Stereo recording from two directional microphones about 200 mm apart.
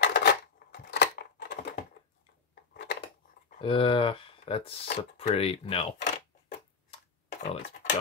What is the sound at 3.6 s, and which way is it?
Speech, 25° left (ahead or behind).